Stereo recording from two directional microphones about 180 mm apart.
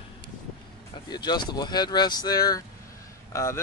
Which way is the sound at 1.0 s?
25° left (ahead or behind).